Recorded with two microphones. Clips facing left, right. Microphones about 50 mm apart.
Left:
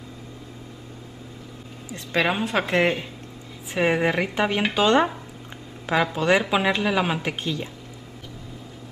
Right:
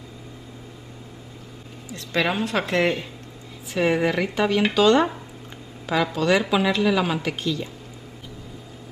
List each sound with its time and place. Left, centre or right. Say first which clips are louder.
2.1 s a woman's voice: even; centre
6.1 s a woman's voice: right 2 dB; left